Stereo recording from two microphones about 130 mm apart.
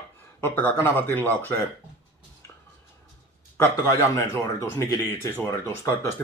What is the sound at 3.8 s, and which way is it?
Speech, 20° left (ahead or behind).